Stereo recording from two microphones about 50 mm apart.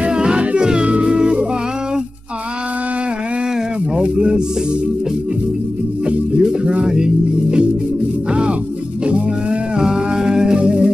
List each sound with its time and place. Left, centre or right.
0.0 s music: centre
3.9 s music: right
6.6 s music: right
8.3 s music: centre